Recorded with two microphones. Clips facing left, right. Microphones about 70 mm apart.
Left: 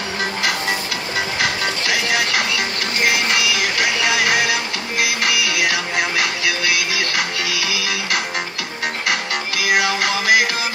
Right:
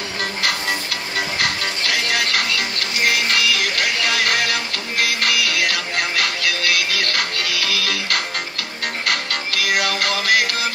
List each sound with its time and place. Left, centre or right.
1.4 s music: left